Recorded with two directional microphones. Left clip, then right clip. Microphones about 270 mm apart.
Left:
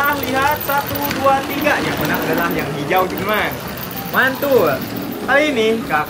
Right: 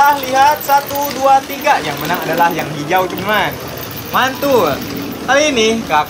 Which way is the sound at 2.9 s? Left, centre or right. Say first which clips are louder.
Right 3 dB; centre.